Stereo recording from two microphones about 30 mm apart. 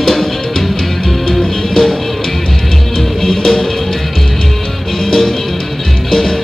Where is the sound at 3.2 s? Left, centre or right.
Centre.